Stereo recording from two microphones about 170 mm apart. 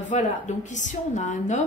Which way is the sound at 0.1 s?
45° left (ahead or behind).